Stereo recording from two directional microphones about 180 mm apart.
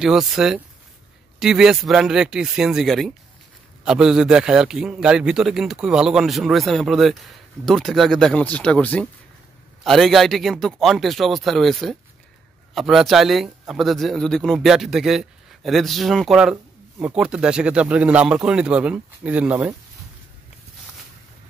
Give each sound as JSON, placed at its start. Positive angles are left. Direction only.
{"t": 0.0, "sound": "a man's voice", "side_deg": -5}